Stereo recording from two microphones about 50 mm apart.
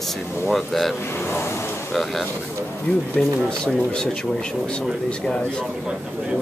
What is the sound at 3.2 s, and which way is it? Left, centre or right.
Speech, centre.